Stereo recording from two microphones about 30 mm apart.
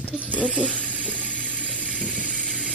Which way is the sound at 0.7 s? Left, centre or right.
Left.